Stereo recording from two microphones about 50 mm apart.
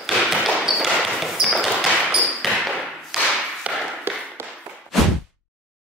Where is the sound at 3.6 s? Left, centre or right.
Right.